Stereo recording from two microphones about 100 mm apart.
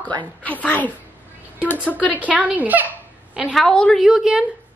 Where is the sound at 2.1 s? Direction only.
15° right (ahead or behind).